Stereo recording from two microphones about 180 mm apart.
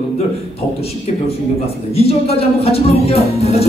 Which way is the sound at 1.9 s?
35° left (ahead or behind).